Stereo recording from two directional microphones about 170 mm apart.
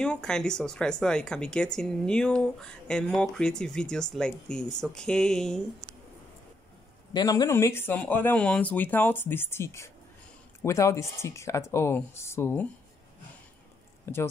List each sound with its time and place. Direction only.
0.0 s speech: 5° left (ahead or behind)
7.2 s speech: 20° left (ahead or behind)
14.1 s speech: 15° left (ahead or behind)